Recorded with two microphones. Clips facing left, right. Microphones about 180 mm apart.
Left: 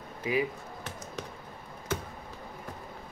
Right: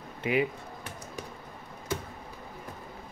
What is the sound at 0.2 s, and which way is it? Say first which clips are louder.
Speech: right 2 dB; 65° right (ahead or behind).